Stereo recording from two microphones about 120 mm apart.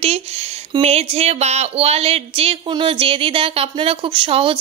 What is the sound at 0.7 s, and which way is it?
Speech, 60° right (ahead or behind).